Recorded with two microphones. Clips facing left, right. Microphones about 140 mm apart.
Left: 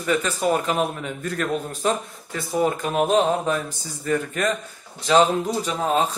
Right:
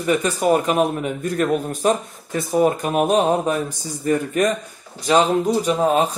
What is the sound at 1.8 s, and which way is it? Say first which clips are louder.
Speech: right 4 dB; 30° right (ahead or behind).